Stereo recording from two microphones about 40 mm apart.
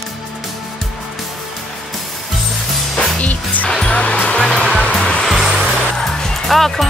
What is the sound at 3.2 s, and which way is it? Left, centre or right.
Music, left.